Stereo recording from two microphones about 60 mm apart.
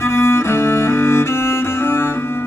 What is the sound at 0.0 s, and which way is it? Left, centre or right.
Cello, left.